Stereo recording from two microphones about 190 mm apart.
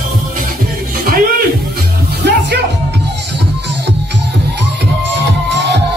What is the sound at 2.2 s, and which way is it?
Music, 60° right (ahead or behind).